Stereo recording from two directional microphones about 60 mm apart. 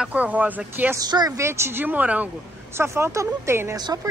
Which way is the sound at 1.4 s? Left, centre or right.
Right.